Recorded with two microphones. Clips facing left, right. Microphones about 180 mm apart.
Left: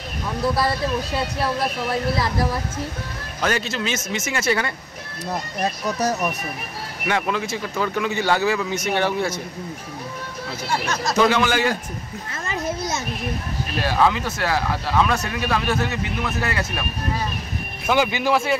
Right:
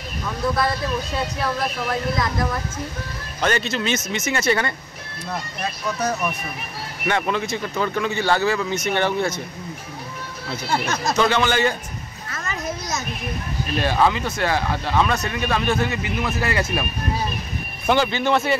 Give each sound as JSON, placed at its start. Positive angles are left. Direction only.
{"t": 1.4, "sound": "speech", "side_deg": 30}
{"t": 3.3, "sound": "speech", "side_deg": 5}
{"t": 5.6, "sound": "speech", "side_deg": 40}
{"t": 7.1, "sound": "speech", "side_deg": 5}
{"t": 11.2, "sound": "speech", "side_deg": 10}
{"t": 12.4, "sound": "a sound", "side_deg": 30}
{"t": 13.7, "sound": "speech", "side_deg": 0}
{"t": 17.8, "sound": "speech", "side_deg": 10}